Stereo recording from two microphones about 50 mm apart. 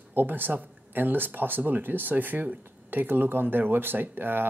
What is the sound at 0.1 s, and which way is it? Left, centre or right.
Speech, right.